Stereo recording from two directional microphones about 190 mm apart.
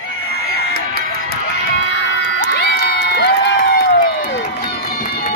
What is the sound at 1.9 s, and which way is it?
Crowd, 70° left (ahead or behind).